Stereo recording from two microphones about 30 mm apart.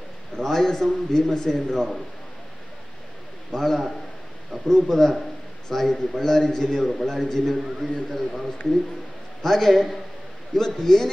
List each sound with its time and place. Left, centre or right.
0.4 s a man's voice: centre
3.5 s a man's voice: centre
6.9 s a man's voice: centre